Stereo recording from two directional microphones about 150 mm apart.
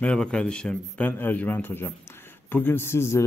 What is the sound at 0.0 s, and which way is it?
A man's voice, 5° left (ahead or behind).